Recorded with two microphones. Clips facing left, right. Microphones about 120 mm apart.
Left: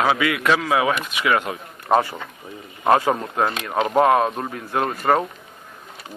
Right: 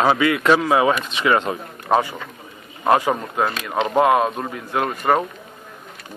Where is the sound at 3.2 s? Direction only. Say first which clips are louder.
Even; 5° left (ahead or behind).